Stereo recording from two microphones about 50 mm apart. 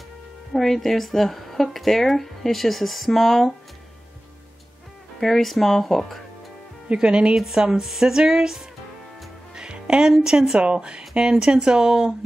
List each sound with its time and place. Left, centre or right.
0.5 s a woman's voice: centre
5.2 s a woman's voice: centre
6.9 s speech: right
7.3 s speech: centre
9.6 s music: centre
10.2 s speech: centre